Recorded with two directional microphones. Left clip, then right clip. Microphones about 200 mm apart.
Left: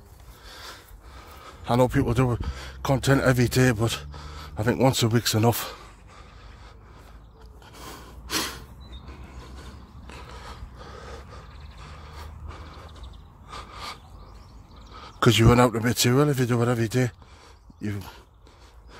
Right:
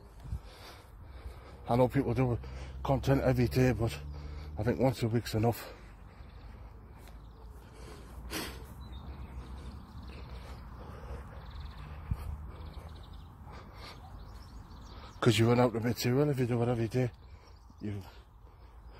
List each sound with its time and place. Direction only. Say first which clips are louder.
0.5 s a sound: left 11 dB; 30° left (ahead or behind)
1.6 s speech: left 6 dB; 30° left (ahead or behind)
7.8 s gasp: left 10 dB; 45° left (ahead or behind)
13.5 s snort: left 13 dB; 40° left (ahead or behind)
15.1 s speech: left 8 dB; 25° left (ahead or behind); by 18.1 s 45° left (ahead or behind)